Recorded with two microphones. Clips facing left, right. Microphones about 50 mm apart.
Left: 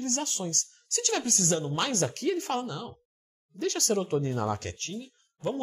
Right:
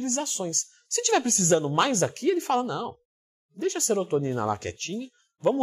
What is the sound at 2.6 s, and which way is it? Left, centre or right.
Speech, right.